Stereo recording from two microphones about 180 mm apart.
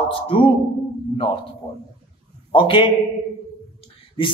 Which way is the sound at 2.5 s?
30° left (ahead or behind).